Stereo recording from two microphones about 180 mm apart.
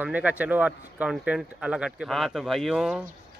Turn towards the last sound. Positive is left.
turn(degrees=-5)  # may be behind; listen again after turning